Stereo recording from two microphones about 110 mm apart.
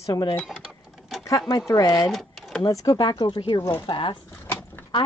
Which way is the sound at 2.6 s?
35° left (ahead or behind).